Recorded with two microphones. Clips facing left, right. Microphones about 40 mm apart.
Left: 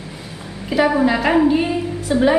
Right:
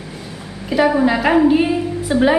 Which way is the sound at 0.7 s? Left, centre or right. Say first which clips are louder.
Right 1 dB; centre.